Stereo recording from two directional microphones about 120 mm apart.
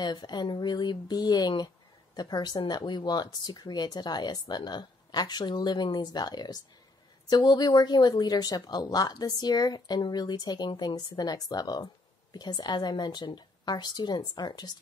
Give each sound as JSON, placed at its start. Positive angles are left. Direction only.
{"t": 0.0, "sound": "speech", "side_deg": 35}